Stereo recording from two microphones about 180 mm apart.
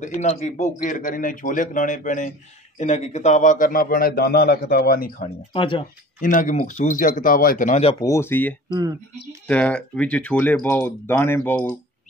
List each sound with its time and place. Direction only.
0.0 s a man's voice: 40° left (ahead or behind)
5.5 s speech: 30° left (ahead or behind)
6.2 s a man's voice: 45° left (ahead or behind)
8.0 s speech: 15° left (ahead or behind)
8.6 s speech: 20° right (ahead or behind)
9.5 s speech: 5° left (ahead or behind)